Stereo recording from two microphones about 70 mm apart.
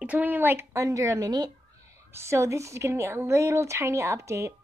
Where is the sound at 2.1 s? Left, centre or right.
Right.